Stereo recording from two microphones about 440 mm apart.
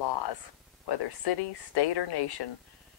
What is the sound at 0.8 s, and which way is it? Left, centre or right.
A woman's voice, left.